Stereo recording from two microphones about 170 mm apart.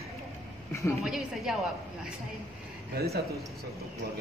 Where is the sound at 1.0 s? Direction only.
Centre (ahead or behind).